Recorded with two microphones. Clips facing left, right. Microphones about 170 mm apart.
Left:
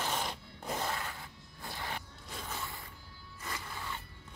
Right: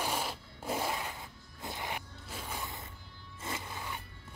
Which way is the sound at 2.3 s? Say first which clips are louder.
Right 1 dB; 10° right (ahead or behind).